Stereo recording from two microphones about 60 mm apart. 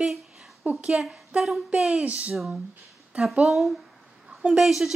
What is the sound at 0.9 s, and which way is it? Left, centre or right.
Speech, centre.